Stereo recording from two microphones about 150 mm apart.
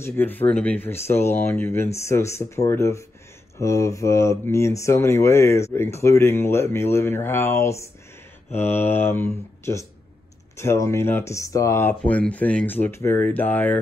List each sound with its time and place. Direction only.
0.0 s speech: 15° left (ahead or behind)